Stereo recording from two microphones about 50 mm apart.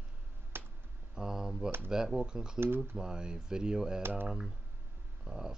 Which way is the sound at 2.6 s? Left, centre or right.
Right.